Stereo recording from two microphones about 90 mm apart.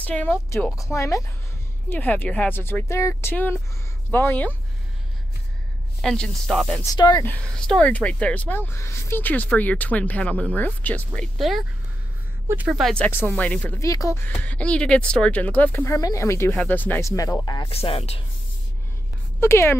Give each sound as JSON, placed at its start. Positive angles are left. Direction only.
{"t": 0.0, "sound": "speech", "side_deg": 15}
{"t": 0.9, "sound": "speech", "side_deg": 35}
{"t": 1.9, "sound": "speech", "side_deg": 20}
{"t": 5.9, "sound": "a woman's voice", "side_deg": 5}
{"t": 7.0, "sound": "speech", "side_deg": 45}
{"t": 7.2, "sound": "speech", "side_deg": 10}
{"t": 11.3, "sound": "a woman's voice", "side_deg": 0}
{"t": 12.9, "sound": "speech", "side_deg": 20}
{"t": 13.7, "sound": "speech", "side_deg": 40}
{"t": 14.2, "sound": "speech", "side_deg": 15}
{"t": 15.9, "sound": "speech", "side_deg": 35}
{"t": 17.0, "sound": "speech", "side_deg": 40}
{"t": 17.6, "sound": "speech", "side_deg": 90}
{"t": 19.4, "sound": "speech", "side_deg": 30}